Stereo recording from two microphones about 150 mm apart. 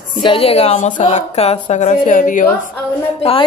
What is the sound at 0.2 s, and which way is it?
Speech, 35° left (ahead or behind).